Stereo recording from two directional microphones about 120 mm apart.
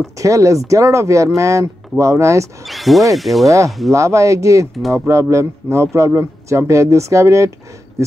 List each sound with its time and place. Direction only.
0.0 s speech: 25° right (ahead or behind)
2.6 s speech: centre (ahead or behind)
3.4 s speech: 25° right (ahead or behind)